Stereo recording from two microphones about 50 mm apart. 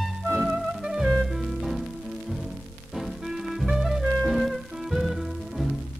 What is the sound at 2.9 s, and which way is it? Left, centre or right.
Music, centre.